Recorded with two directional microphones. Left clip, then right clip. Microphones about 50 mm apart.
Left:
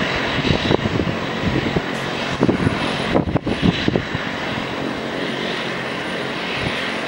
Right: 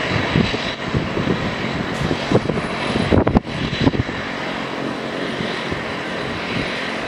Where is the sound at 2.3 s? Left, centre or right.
Left.